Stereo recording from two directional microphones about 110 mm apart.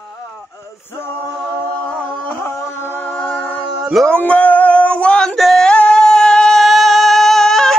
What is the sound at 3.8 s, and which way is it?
Music, centre (ahead or behind).